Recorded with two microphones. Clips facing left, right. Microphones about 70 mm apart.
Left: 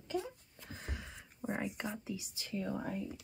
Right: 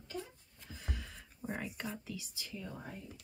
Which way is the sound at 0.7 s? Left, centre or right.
Left.